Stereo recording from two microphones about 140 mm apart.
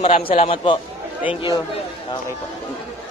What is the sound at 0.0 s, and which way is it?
A man's voice, 40° left (ahead or behind).